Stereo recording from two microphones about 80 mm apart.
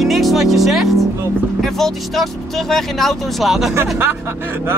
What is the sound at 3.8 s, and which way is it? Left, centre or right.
Speech, right.